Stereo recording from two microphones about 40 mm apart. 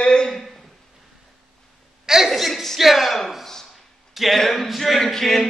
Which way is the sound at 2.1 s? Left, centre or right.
Centre.